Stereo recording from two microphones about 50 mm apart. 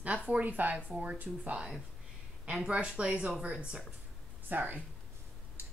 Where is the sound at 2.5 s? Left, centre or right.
Centre.